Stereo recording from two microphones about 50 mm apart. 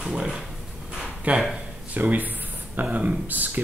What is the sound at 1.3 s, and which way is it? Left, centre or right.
Speech, right.